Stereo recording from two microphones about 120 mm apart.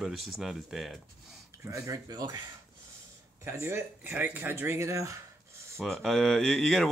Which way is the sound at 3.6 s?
15° right (ahead or behind).